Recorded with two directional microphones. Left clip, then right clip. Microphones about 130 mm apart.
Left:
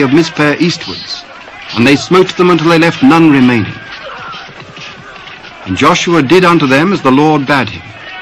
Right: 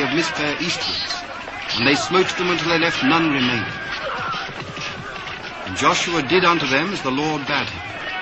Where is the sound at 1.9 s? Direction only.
35° left (ahead or behind).